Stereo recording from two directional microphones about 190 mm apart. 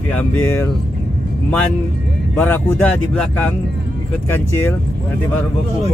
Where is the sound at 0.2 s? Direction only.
10° left (ahead or behind).